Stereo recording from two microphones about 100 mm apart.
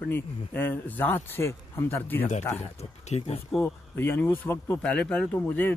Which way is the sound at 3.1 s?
90° left.